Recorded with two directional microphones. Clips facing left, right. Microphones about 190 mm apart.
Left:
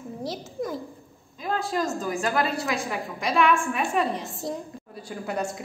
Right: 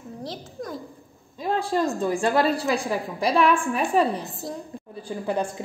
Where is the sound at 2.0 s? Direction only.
30° right (ahead or behind).